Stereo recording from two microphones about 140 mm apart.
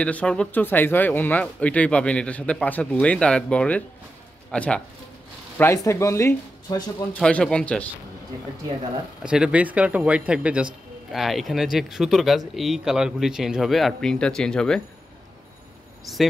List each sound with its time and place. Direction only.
0.0 s speech: 10° left (ahead or behind)
5.6 s speech: 20° left (ahead or behind)
7.2 s speech: 5° left (ahead or behind)
9.2 s speech: 5° right (ahead or behind)